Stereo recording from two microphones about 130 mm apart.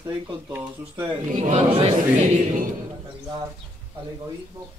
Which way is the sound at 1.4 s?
55° right (ahead or behind).